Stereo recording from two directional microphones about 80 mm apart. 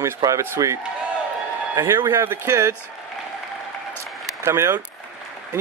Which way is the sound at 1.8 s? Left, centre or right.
Right.